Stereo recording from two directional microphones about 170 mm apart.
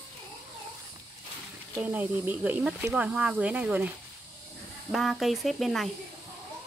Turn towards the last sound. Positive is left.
turn(degrees=0)  # may be behind; listen again after turning